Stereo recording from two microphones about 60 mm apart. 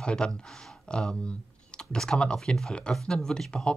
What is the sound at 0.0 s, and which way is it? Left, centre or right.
Speech, centre.